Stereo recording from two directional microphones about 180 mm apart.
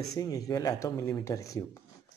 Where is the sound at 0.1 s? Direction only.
20° left (ahead or behind).